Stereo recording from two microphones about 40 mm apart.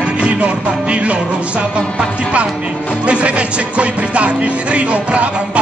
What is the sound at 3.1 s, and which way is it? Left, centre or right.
Music, right.